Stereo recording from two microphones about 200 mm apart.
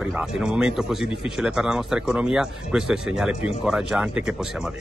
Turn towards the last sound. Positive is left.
turn(degrees=0)  # may be behind; listen again after turning